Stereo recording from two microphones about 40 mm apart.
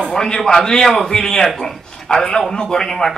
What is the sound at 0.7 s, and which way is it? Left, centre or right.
A man's voice, centre.